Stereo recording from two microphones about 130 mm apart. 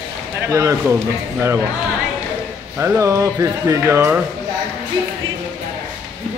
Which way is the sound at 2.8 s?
25° right (ahead or behind).